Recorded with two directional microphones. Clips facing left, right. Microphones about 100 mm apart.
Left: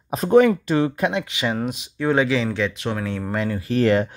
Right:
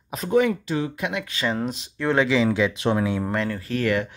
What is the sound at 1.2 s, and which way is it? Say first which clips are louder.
Speech: left 1 dB; 15° left (ahead or behind).